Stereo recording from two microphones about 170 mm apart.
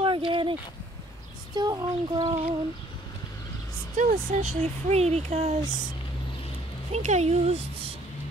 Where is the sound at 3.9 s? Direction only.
50° right (ahead or behind).